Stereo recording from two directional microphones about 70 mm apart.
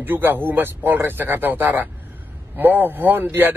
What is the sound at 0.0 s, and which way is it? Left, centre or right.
A man's voice, right.